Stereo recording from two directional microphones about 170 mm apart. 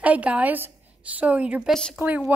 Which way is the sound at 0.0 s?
10° right (ahead or behind).